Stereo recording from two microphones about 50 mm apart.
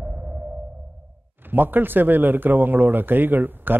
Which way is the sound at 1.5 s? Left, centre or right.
Right.